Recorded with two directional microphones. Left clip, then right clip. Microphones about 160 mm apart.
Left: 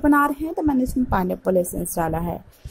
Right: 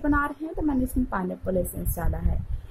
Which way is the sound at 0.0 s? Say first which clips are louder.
Left 7 dB; 20° left (ahead or behind).